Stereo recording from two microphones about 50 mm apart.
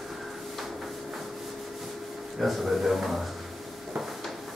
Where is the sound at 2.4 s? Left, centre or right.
Centre.